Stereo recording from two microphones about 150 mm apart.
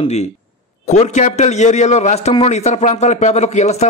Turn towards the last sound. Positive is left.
turn(degrees=50)  # may be behind; listen again after turning